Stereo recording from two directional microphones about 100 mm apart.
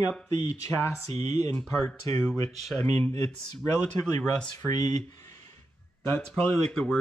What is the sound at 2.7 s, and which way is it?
Speech, 25° left (ahead or behind).